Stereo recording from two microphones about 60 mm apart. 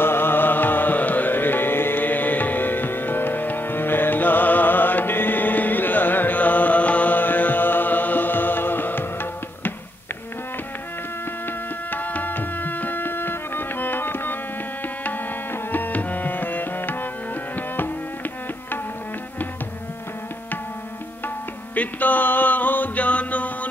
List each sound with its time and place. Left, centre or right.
0.0 s music: left
11.9 s tabla: left
15.7 s tabla: left
21.7 s music: left